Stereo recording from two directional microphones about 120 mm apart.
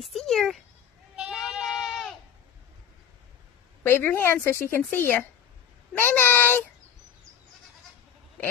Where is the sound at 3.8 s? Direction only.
20° left (ahead or behind).